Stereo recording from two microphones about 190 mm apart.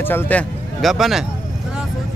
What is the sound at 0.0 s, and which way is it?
Speech, 10° left (ahead or behind).